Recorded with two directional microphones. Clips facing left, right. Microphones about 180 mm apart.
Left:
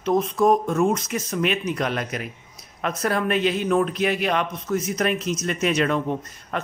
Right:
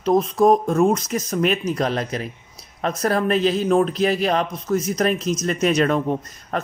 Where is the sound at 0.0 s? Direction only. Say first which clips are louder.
Right 3 dB; 35° right (ahead or behind).